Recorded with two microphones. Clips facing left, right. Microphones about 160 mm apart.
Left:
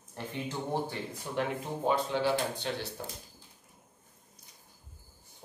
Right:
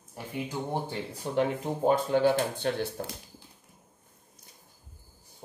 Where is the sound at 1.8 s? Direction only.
50° right (ahead or behind).